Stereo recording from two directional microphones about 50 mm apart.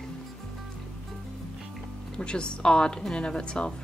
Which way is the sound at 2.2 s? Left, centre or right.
Centre.